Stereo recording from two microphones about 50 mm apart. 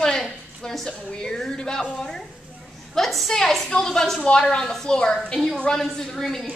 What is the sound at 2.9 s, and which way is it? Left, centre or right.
A woman's voice, centre.